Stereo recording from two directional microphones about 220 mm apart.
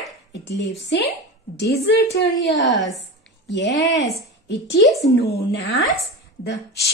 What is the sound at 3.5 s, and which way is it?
Speech, 55° left (ahead or behind).